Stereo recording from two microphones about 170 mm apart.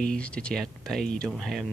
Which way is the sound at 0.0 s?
5° left (ahead or behind).